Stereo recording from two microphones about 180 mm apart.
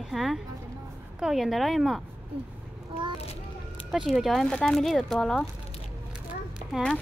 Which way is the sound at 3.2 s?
35° left (ahead or behind).